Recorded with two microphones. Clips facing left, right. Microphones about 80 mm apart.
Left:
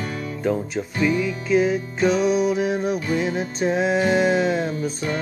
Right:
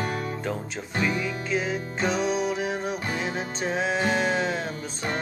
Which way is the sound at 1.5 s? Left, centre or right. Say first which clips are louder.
Left 10 dB; centre.